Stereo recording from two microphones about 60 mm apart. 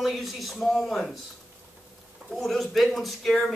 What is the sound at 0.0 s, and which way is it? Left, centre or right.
Speech, centre.